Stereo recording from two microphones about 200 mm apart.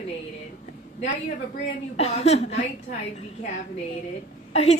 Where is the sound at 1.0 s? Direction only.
45° left (ahead or behind).